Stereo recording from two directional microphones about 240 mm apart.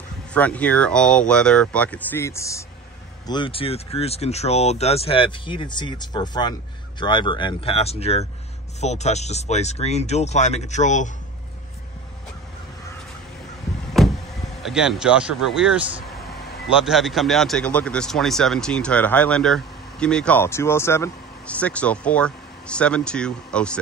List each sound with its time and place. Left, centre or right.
0.3 s speech: centre; by 11.1 s left
14.0 s power windows: centre
14.6 s speech: centre